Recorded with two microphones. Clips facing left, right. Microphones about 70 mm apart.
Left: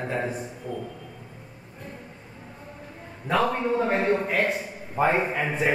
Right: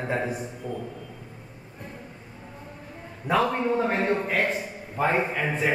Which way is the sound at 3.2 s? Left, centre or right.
Centre.